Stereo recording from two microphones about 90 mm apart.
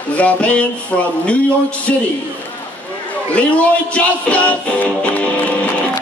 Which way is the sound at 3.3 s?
15° left (ahead or behind).